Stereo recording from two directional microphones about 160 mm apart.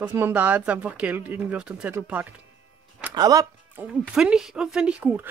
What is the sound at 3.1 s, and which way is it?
Speech, 25° right (ahead or behind).